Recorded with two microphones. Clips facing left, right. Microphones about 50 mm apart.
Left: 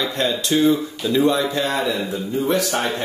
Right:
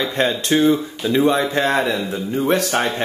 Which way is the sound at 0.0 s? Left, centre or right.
Right.